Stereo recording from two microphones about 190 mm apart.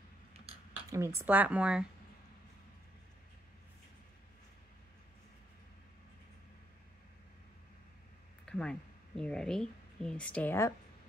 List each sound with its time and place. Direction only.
0.8 s speech: 15° right (ahead or behind)
8.5 s speech: 5° left (ahead or behind)